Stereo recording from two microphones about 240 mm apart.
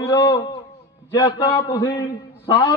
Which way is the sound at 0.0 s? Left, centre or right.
Centre.